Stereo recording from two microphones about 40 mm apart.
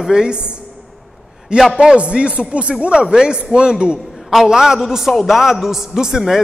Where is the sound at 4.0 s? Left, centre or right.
Centre.